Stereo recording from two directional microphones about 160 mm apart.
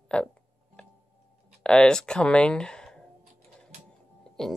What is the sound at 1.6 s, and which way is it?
Speech, 5° left (ahead or behind).